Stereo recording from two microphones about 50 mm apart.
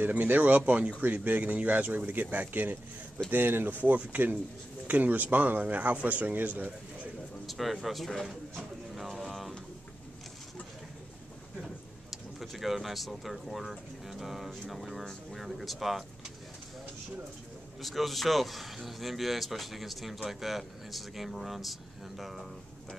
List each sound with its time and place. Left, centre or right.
0.2 s speech: right
7.4 s speech: centre
8.9 s a sound: centre
11.6 s speech: centre
17.8 s speech: centre